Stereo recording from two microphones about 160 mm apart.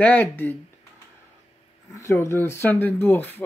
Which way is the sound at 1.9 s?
15° left (ahead or behind).